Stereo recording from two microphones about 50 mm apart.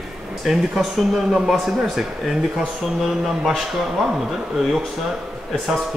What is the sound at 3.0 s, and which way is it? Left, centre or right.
Speech, centre.